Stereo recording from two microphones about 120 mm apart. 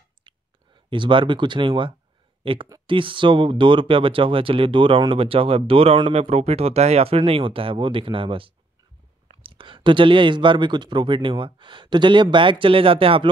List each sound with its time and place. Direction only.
0.8 s speech: 45° right (ahead or behind)
6.1 s speech: 60° right (ahead or behind)